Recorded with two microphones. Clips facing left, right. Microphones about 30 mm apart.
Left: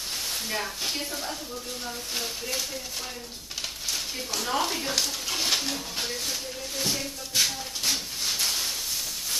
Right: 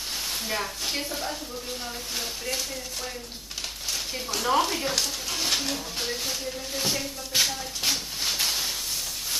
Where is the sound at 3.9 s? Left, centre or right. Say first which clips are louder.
Right 2 dB; centre.